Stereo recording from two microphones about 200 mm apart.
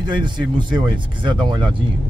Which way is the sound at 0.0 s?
25° right (ahead or behind).